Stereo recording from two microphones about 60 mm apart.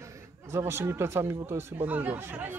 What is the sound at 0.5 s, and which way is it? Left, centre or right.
Speech, right.